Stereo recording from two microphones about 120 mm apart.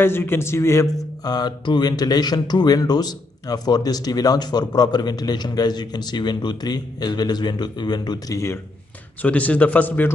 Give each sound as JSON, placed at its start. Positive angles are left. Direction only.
{"t": 0.0, "sound": "a man's voice", "side_deg": 20}
{"t": 1.3, "sound": "a man's voice", "side_deg": 35}
{"t": 9.2, "sound": "a man's voice", "side_deg": 10}